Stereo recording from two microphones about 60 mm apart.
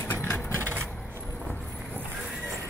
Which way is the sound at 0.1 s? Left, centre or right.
Left.